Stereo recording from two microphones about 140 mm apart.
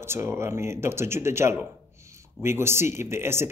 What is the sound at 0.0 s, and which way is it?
A man's voice, 20° right (ahead or behind).